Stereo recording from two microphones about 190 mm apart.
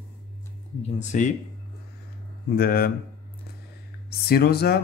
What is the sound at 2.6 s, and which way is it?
Speech, 55° left (ahead or behind).